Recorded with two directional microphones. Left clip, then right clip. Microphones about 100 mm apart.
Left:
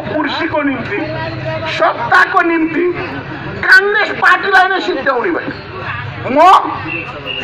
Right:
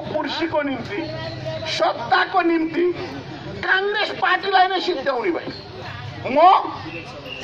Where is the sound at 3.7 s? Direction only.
30° right (ahead or behind).